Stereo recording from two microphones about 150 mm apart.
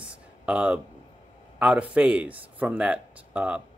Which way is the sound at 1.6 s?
10° right (ahead or behind).